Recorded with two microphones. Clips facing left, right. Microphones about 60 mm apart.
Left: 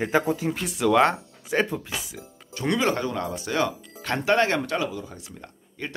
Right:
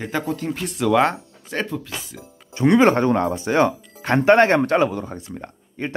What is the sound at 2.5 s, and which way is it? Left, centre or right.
Speech, right.